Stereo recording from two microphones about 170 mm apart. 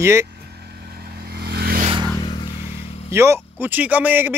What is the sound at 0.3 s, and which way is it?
Vehicle, 70° right (ahead or behind).